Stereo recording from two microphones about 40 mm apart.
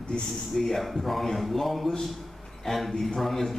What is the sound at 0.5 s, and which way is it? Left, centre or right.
A man's voice, centre.